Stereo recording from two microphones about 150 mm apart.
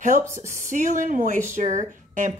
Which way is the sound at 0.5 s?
60° right (ahead or behind).